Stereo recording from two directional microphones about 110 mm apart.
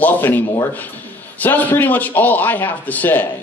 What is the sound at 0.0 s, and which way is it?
Speech, 15° left (ahead or behind).